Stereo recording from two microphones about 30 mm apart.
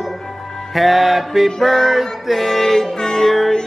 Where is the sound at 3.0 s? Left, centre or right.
Centre.